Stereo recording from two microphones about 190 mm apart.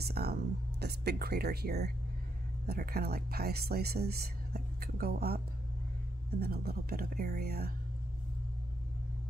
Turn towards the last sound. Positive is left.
turn(degrees=-55)  # may be behind; listen again after turning